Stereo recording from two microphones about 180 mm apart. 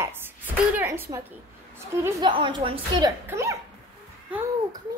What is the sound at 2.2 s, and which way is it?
Speech, 30° right (ahead or behind).